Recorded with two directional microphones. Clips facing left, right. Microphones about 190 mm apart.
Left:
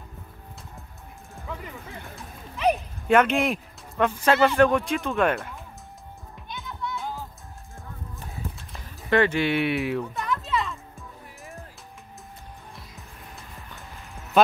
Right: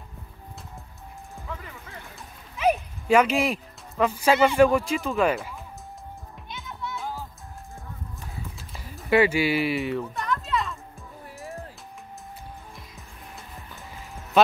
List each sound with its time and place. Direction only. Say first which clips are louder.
2.1 s speech: left 2 dB; centre (ahead or behind)
6.5 s music: left 2 dB; 20° right (ahead or behind)
8.7 s a sound: right 1 dB; 5° right (ahead or behind)